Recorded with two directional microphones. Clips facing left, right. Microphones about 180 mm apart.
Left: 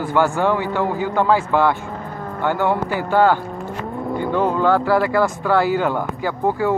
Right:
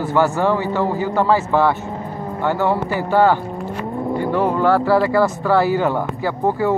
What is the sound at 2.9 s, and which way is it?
Speech, 10° right (ahead or behind).